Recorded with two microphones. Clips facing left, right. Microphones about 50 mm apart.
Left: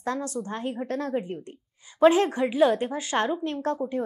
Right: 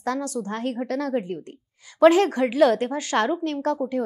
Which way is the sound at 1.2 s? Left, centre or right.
Right.